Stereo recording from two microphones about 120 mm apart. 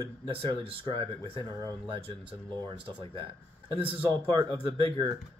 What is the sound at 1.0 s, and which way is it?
Speech, 25° left (ahead or behind).